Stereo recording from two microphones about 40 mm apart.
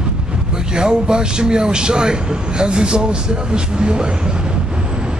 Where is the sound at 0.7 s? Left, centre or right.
Centre.